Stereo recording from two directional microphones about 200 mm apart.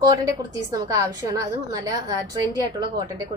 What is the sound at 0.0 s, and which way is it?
A woman's voice, 20° right (ahead or behind).